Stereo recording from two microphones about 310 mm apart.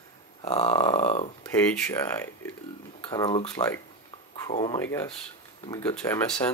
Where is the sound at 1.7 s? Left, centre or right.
Centre.